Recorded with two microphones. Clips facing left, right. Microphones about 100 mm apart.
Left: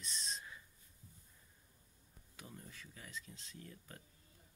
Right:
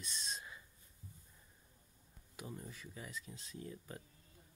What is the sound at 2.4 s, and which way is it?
Speech, 15° right (ahead or behind).